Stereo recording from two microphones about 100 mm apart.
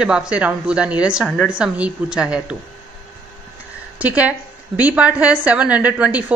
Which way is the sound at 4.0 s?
15° right (ahead or behind).